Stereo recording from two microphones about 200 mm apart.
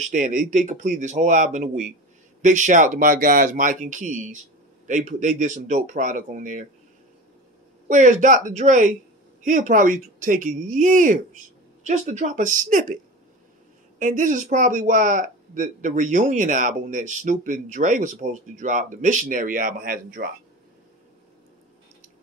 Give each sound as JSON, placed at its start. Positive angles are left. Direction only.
{"t": 0.0, "sound": "speech", "side_deg": -40}
{"t": 7.9, "sound": "speech", "side_deg": -40}